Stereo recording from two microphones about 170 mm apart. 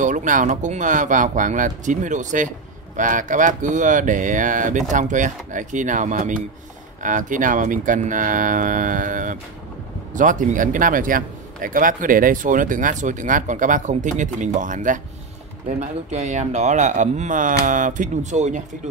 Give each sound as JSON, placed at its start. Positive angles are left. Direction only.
{"t": 0.0, "sound": "speech", "side_deg": -50}